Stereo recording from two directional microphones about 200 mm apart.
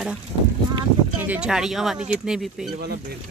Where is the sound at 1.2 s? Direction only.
5° right (ahead or behind).